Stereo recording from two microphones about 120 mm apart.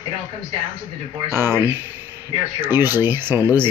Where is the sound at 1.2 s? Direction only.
20° right (ahead or behind).